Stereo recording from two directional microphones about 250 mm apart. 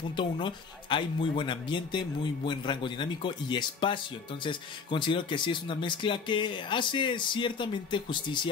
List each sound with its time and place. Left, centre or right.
0.1 s speech: centre